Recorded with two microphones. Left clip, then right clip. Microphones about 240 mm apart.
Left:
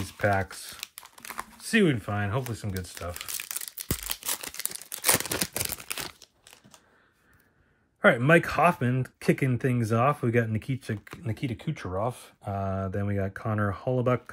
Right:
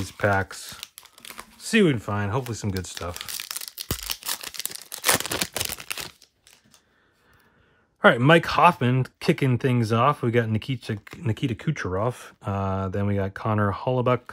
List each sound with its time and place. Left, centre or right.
0.0 s speech: right
0.7 s computer keyboard: centre
1.7 s speech: right
3.3 s tearing: centre
5.1 s a sound: centre
8.0 s speech: centre
11.3 s speech: right
12.5 s speech: right